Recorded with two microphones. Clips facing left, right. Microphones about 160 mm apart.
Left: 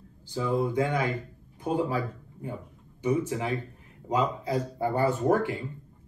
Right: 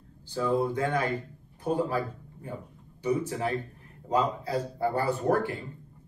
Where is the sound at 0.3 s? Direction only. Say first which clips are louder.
Right 1 dB; 10° left (ahead or behind).